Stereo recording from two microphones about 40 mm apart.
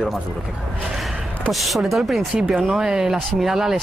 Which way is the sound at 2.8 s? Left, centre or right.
Centre.